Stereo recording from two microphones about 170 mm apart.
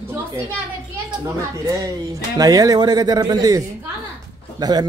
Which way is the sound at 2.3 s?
20° right (ahead or behind).